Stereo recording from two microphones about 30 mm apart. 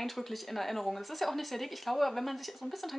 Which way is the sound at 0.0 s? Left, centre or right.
Centre.